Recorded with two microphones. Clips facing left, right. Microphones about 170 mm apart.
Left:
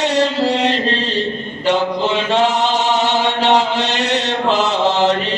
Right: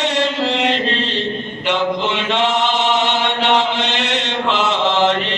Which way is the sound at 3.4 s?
40° left (ahead or behind).